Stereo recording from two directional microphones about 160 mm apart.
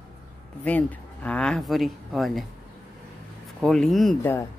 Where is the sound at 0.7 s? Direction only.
10° left (ahead or behind).